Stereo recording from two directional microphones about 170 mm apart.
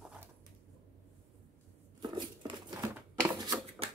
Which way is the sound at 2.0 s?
25° right (ahead or behind).